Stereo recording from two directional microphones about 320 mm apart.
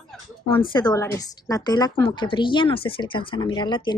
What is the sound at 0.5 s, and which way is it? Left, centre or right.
A woman's voice, centre.